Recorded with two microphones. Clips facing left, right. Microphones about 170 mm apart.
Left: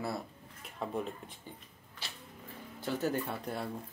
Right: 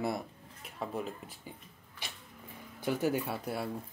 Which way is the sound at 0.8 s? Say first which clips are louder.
Left 1 dB; centre (ahead or behind).